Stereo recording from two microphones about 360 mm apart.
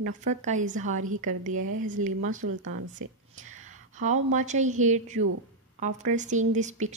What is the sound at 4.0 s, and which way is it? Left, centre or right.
A woman's voice, centre.